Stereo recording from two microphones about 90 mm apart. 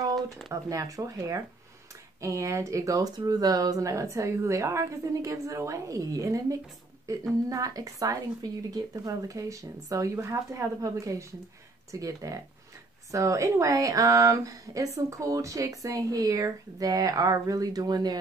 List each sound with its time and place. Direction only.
0.5 s speech: 40° right (ahead or behind)